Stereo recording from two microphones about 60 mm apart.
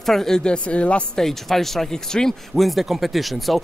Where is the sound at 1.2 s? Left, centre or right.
Centre.